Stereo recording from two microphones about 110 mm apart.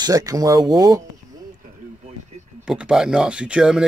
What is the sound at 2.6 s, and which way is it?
Speech, 5° right (ahead or behind).